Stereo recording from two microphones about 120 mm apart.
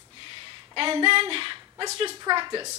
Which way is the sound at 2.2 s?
35° right (ahead or behind).